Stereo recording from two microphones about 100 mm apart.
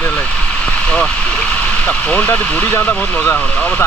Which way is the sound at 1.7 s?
15° left (ahead or behind).